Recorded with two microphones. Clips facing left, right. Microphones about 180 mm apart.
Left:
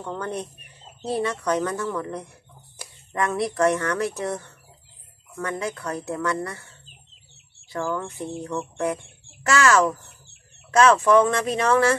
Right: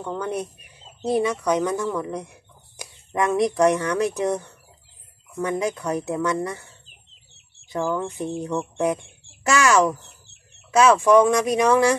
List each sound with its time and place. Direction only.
0.0 s speech: 5° right (ahead or behind)
7.7 s speech: 15° right (ahead or behind)